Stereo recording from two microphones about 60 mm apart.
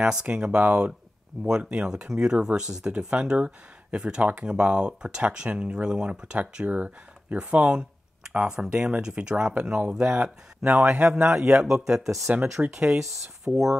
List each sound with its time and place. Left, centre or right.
0.0 s a man's voice: centre
11.1 s speech: centre